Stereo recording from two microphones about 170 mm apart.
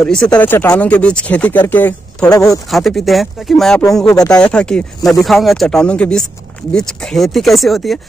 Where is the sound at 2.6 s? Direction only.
Centre (ahead or behind).